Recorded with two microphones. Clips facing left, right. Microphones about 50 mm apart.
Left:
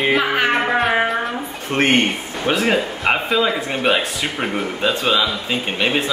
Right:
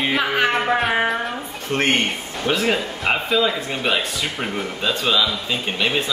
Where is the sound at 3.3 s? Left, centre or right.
Centre.